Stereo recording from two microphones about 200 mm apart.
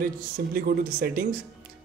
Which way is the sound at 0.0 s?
50° right (ahead or behind).